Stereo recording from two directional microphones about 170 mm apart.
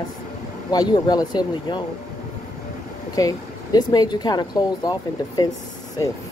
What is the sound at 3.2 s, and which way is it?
Speech, 20° left (ahead or behind).